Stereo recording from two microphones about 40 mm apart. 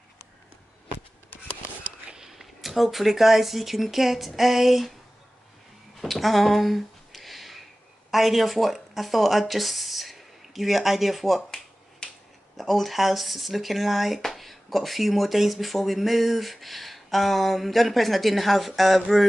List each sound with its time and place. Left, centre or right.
2.2 s speech: centre
5.9 s a sound: centre
8.1 s speech: centre
12.0 s finger snapping: left
12.5 s speech: centre